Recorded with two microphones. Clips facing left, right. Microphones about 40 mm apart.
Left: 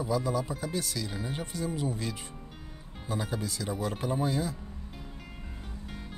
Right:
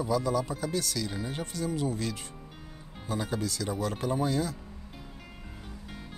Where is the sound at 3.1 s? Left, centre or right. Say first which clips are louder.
Right 2 dB; centre.